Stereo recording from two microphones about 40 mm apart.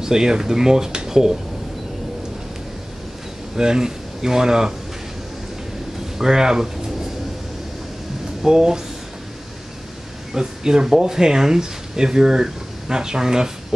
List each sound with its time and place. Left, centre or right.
0.0 s speech: centre
3.5 s speech: centre
6.1 s speech: centre
8.5 s speech: centre
10.3 s speech: centre